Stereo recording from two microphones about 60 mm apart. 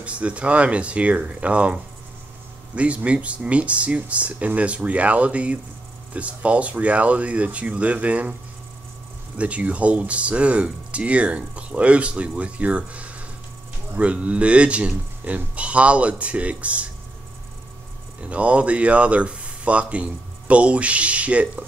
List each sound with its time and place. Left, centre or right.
0.0 s speech: right
9.4 s speech: right
18.3 s speech: right